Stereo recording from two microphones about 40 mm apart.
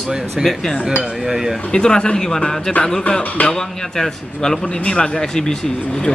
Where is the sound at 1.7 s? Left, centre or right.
Left.